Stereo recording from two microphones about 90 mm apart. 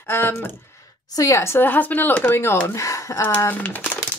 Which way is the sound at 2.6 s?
35° left (ahead or behind).